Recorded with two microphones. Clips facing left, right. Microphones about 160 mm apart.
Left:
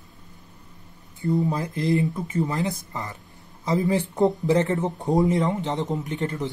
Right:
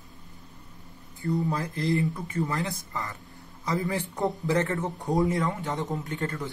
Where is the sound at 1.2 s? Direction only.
20° left (ahead or behind).